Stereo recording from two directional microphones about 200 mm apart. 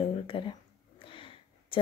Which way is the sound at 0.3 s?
25° left (ahead or behind).